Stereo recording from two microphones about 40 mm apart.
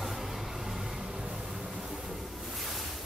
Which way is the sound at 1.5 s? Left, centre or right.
Centre.